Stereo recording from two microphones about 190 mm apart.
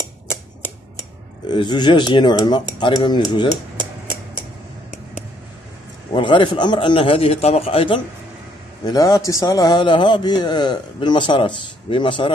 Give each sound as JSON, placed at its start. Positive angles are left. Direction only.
{"t": 1.5, "sound": "a man's voice", "side_deg": 25}
{"t": 6.1, "sound": "a man's voice", "side_deg": 25}